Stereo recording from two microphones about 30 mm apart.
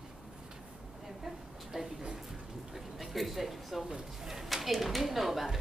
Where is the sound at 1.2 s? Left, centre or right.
Centre.